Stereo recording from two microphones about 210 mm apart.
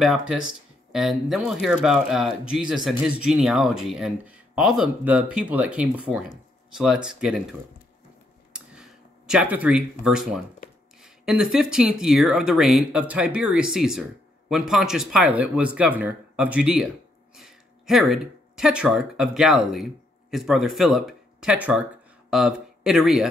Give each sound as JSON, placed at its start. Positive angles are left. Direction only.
{"t": 0.0, "sound": "speech", "side_deg": 0}
{"t": 9.3, "sound": "speech", "side_deg": -5}